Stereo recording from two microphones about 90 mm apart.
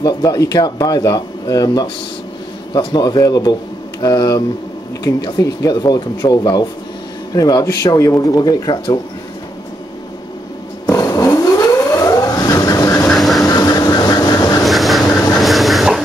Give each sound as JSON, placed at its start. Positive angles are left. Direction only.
{"t": 0.0, "sound": "speech", "side_deg": 45}
{"t": 10.9, "sound": "vehicle", "side_deg": 40}
{"t": 13.1, "sound": "vehicle", "side_deg": 0}
{"t": 13.5, "sound": "vehicle", "side_deg": 40}
{"t": 14.6, "sound": "vehicle", "side_deg": 0}
{"t": 15.0, "sound": "vehicle", "side_deg": 35}
{"t": 15.3, "sound": "a sound", "side_deg": 0}